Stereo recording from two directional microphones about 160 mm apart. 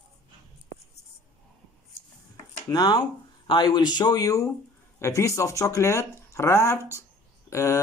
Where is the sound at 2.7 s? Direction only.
25° left (ahead or behind).